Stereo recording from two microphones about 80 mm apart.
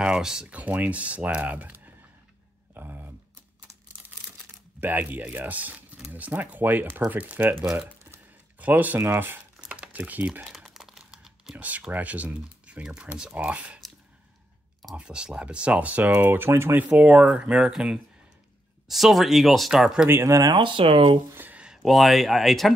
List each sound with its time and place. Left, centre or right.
0.0 s speech: centre
2.7 s a sound: right
4.7 s speech: right
8.1 s a sound: right
9.6 s crumpling: centre
10.5 s crumpling: centre
11.5 s speech: right
15.0 s speech: centre
20.1 s speech: right
20.5 s speech: right
21.3 s a sound: right
21.8 s speech: centre